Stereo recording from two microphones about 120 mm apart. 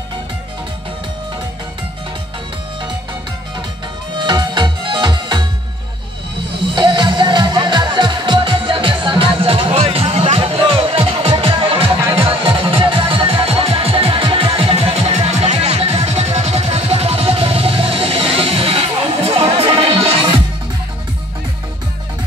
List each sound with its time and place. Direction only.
4.2 s music: 40° right (ahead or behind)
6.7 s music: 40° right (ahead or behind)